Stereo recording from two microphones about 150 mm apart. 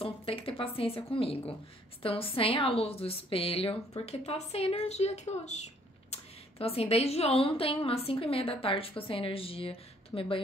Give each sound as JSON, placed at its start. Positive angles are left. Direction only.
{"t": 0.0, "sound": "speech", "side_deg": 40}